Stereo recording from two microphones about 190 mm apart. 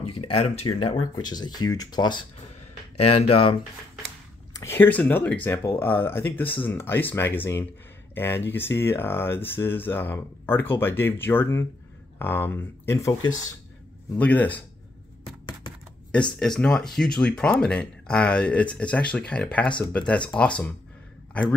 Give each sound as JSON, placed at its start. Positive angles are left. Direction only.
{"t": 0.0, "sound": "speech", "side_deg": 30}
{"t": 3.3, "sound": "speech", "side_deg": 30}
{"t": 4.6, "sound": "speech", "side_deg": 10}
{"t": 16.3, "sound": "a man's voice", "side_deg": 0}